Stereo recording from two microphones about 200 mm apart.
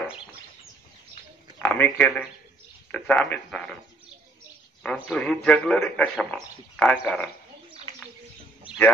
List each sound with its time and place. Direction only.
1.6 s a man's voice: 10° left (ahead or behind)
4.8 s a man's voice: 5° left (ahead or behind)